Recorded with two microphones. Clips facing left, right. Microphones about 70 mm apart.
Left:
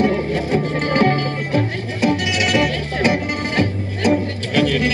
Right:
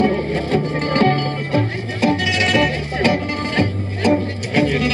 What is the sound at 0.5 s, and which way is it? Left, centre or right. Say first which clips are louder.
Music: even; centre.